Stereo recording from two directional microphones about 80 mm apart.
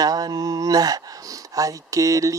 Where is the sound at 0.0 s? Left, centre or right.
Right.